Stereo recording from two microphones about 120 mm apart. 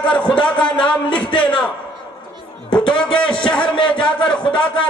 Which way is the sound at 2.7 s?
40° left (ahead or behind).